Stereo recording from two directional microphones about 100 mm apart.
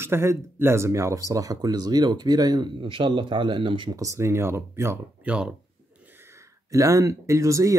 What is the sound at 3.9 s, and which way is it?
Speech, 30° right (ahead or behind).